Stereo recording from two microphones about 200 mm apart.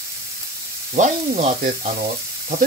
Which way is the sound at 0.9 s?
35° right (ahead or behind).